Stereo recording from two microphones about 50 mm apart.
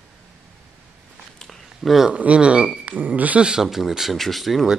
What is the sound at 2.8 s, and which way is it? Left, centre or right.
Speech, right.